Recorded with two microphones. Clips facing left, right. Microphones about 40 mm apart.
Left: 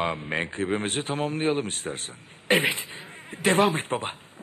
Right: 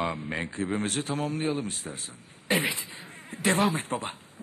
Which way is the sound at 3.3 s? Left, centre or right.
Left.